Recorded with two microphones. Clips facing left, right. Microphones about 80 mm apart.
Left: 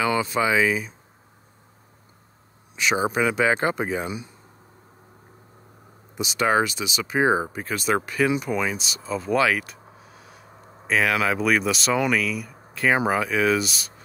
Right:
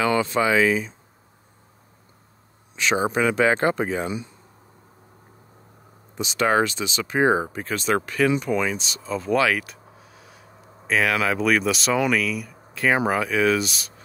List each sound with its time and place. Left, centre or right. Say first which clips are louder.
0.0 s speech: right 2 dB; centre
2.7 s speech: right 1 dB; centre
6.1 s speech: right 1 dB; centre